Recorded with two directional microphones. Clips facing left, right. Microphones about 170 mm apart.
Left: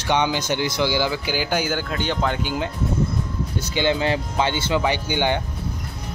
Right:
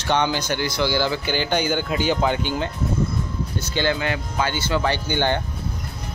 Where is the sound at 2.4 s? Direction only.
5° left (ahead or behind).